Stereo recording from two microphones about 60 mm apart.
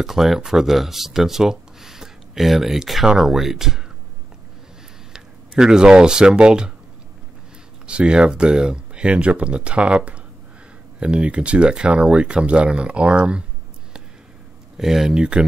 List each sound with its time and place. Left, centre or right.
0.0 s speech: centre
5.1 s speech: centre
7.8 s speech: centre
14.8 s speech: centre